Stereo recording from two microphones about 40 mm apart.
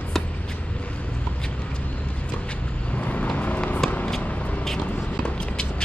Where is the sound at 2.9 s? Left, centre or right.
Left.